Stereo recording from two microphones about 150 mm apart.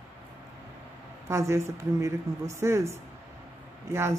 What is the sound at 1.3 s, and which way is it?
Speech, 20° right (ahead or behind).